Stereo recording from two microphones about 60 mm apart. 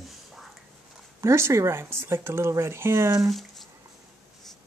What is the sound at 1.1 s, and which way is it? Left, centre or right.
Speech, right.